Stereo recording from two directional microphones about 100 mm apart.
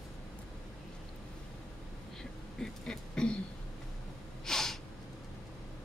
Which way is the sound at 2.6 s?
5° left (ahead or behind).